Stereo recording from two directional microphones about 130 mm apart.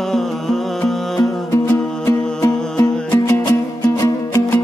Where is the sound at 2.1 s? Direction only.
25° left (ahead or behind).